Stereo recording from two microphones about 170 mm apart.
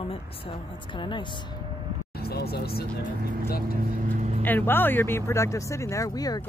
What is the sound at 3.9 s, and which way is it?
Vehicle, 45° right (ahead or behind).